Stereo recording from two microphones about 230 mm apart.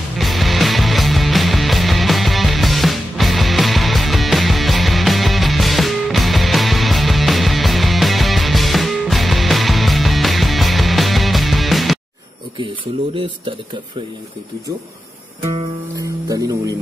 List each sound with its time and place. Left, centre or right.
0.2 s music: centre
12.5 s a sound: right
15.5 s music: centre